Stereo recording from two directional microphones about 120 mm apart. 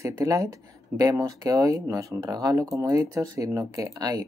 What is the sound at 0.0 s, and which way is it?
Speech, 25° right (ahead or behind).